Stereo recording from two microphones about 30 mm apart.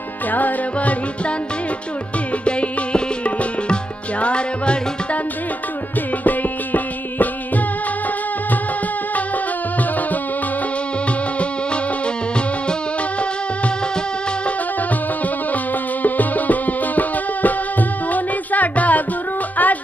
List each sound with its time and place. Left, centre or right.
0.3 s music: left
0.7 s music: left
2.4 s music: left
6.2 s music: left
15.5 s music: left